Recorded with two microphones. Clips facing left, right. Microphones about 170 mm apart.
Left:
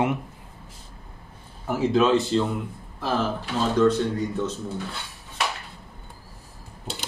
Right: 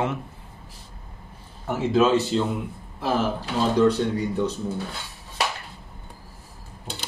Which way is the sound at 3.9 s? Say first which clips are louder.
Even; 10° right (ahead or behind).